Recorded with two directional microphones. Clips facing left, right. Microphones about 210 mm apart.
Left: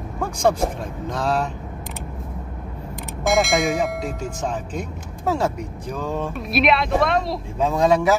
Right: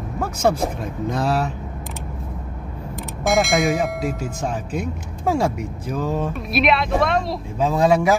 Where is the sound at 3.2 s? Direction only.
Centre (ahead or behind).